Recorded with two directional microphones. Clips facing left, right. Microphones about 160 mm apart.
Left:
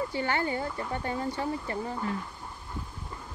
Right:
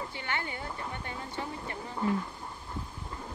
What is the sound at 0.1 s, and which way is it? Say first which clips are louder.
A woman's voice: left 8 dB; 40° left (ahead or behind).